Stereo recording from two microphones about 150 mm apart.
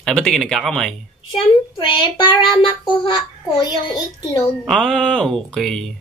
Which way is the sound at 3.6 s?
25° left (ahead or behind).